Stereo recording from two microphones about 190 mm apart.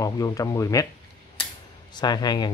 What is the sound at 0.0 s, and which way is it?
Speech, 20° left (ahead or behind).